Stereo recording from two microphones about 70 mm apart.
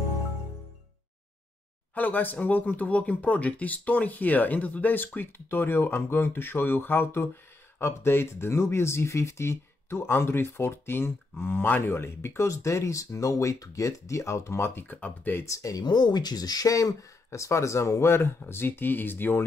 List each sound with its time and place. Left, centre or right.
2.0 s speech: left
15.4 s speech: left
15.8 s speech: left